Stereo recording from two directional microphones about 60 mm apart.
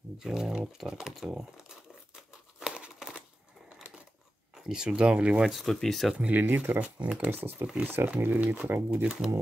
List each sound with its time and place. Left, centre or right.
0.2 s speech: centre
2.6 s crumpling: centre
3.2 s a sound: right
4.6 s speech: centre
5.4 s speech: centre
6.3 s speech: right
7.2 s speech: right
8.5 s speech: right
8.9 s speech: right